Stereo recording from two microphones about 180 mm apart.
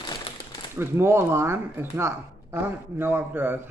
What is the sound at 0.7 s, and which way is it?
Speech, 15° right (ahead or behind).